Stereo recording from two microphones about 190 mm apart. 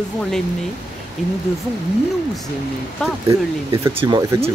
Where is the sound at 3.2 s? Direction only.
15° right (ahead or behind).